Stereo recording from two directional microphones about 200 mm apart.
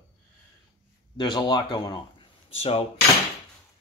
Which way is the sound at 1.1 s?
20° left (ahead or behind).